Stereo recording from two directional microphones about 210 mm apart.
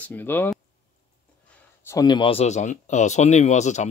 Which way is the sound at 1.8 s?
20° left (ahead or behind).